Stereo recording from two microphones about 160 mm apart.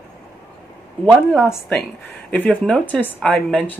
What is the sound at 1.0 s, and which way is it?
Speech, 5° left (ahead or behind).